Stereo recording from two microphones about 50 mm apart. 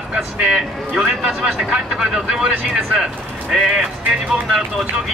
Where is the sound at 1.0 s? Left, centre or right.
Centre.